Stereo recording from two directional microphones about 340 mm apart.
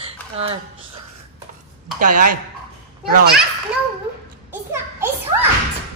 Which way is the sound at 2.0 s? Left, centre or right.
Right.